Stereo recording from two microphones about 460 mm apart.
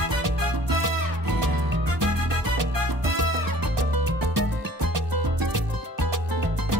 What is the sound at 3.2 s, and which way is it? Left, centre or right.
Music, right.